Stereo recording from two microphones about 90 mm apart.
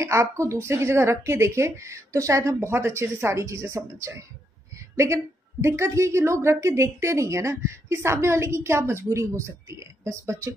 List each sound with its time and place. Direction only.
0.0 s a woman's voice: 30° right (ahead or behind)